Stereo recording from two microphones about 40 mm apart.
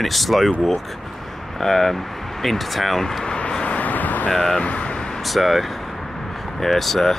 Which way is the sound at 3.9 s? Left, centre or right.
Left.